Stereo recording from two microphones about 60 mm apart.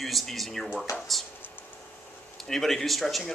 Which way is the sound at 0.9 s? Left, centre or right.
Left.